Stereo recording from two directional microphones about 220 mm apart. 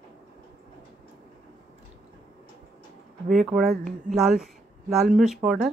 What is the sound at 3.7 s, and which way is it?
Speech, 35° right (ahead or behind).